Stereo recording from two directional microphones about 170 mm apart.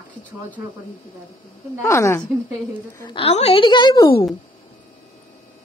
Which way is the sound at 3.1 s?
35° left (ahead or behind).